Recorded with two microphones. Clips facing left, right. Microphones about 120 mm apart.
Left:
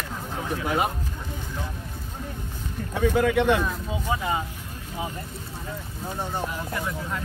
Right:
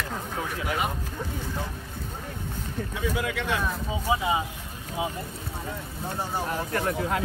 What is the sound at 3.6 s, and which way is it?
Speech, 5° right (ahead or behind).